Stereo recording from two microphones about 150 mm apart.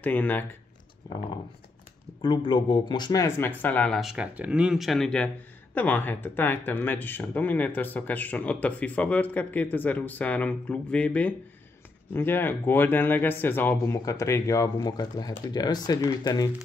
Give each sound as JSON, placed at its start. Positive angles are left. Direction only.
{"t": 0.0, "sound": "speech", "side_deg": 10}
{"t": 1.0, "sound": "speech", "side_deg": 25}
{"t": 2.2, "sound": "speech", "side_deg": 30}
{"t": 4.0, "sound": "speech", "side_deg": -5}